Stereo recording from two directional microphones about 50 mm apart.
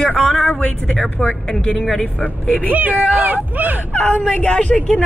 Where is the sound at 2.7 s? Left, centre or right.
Right.